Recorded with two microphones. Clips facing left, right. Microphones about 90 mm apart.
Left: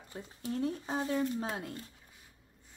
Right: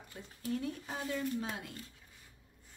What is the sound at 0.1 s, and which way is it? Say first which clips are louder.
Speech: left 1 dB; 25° left (ahead or behind).